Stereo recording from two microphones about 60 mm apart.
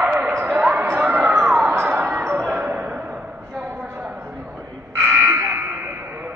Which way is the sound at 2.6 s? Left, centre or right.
Right.